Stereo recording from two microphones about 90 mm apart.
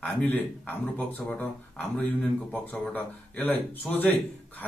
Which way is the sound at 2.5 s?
20° left (ahead or behind).